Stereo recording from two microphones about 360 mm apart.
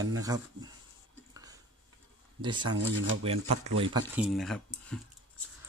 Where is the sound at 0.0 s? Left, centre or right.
Centre.